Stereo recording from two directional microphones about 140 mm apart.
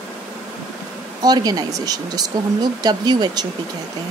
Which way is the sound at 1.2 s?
30° right (ahead or behind).